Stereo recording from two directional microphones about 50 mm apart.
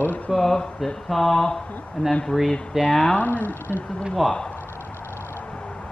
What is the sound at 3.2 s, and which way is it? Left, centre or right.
Speech, left.